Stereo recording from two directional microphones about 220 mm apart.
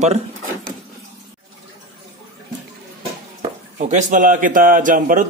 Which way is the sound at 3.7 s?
35° right (ahead or behind).